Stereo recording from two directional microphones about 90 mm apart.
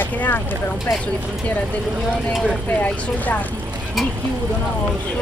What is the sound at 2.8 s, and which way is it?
Speech, 15° left (ahead or behind).